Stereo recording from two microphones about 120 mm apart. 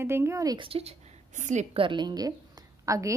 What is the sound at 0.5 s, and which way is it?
Speech, 50° right (ahead or behind).